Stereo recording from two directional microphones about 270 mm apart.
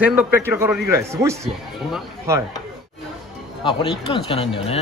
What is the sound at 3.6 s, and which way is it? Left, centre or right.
Speech, centre.